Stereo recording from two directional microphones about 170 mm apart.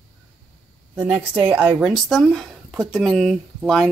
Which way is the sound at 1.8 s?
Centre (ahead or behind).